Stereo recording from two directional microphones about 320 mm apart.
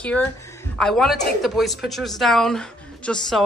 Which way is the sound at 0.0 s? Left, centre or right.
Centre.